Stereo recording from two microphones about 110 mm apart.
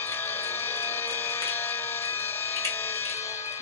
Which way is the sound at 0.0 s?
20° left (ahead or behind).